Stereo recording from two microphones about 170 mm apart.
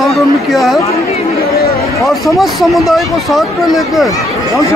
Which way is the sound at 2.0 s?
Centre (ahead or behind).